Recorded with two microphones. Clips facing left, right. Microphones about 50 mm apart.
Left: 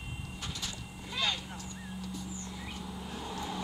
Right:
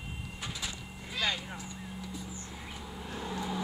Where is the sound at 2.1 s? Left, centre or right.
Centre.